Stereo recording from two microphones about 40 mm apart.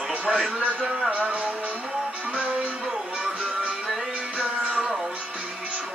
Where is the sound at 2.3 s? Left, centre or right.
Right.